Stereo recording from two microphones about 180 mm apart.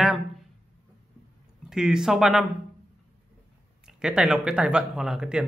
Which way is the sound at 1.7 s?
5° right (ahead or behind).